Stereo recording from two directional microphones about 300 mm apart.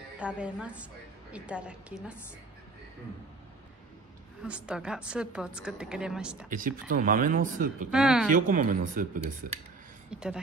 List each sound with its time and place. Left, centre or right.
0.2 s a woman's voice: centre
4.4 s a woman's voice: centre
6.5 s speech: right
7.9 s a woman's voice: centre
8.5 s speech: right
10.1 s speech: centre